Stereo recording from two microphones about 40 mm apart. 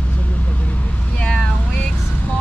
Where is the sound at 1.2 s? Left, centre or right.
Left.